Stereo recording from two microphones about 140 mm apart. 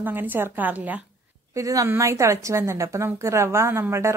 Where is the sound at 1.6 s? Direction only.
25° right (ahead or behind).